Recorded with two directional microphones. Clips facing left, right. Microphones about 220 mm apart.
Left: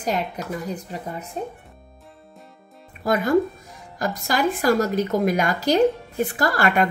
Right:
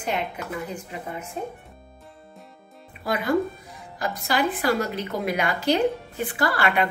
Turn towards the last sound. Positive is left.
turn(degrees=45)  # may be behind; listen again after turning